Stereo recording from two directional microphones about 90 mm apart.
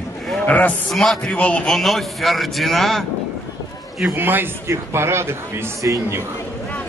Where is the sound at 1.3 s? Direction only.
15° left (ahead or behind).